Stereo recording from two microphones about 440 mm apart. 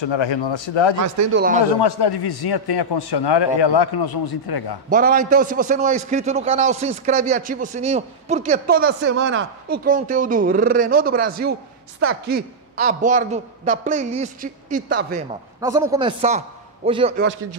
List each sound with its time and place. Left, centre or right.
0.0 s speech: left
0.9 s speech: right
1.3 s speech: centre
1.8 s a man's voice: left
4.8 s a man's voice: centre